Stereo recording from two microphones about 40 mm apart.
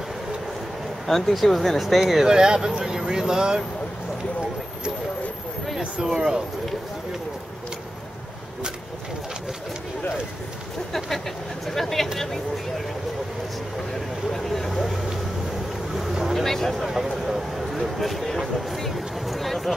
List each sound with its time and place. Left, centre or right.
1.0 s speech: centre
2.2 s speech: centre
5.8 s speech: centre
11.6 s speech: centre
14.3 s speech: centre
15.9 s boat: centre
16.3 s speech: centre
16.8 s speech: centre
17.9 s speech: centre